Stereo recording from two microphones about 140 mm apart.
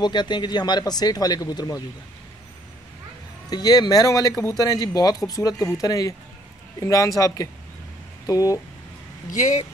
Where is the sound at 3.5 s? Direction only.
30° left (ahead or behind).